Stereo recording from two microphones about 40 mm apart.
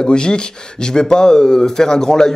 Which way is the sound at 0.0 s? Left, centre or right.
Left.